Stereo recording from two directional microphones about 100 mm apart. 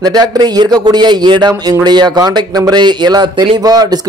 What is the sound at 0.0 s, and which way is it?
Speech, 45° right (ahead or behind).